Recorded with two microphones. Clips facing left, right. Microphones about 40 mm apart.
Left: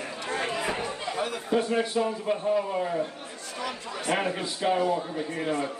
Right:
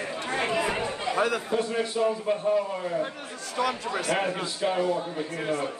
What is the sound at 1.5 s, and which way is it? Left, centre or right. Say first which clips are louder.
Speech: left 2 dB; centre.